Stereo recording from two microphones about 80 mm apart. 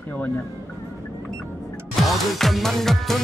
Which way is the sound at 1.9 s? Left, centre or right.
Centre.